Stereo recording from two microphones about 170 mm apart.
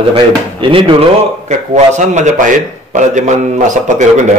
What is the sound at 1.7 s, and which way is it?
A man's voice, 45° right (ahead or behind).